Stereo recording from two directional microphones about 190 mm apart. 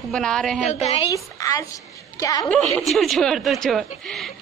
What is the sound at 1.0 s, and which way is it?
Speech, 15° left (ahead or behind).